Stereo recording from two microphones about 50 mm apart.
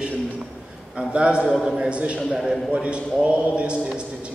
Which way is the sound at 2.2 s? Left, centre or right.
Centre.